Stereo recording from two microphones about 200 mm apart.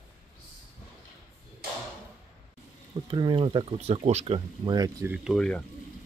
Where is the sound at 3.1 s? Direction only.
25° right (ahead or behind); by 5.6 s centre (ahead or behind).